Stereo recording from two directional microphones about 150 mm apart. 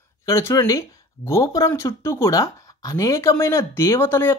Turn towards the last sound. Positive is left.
turn(degrees=15)  # may be behind; listen again after turning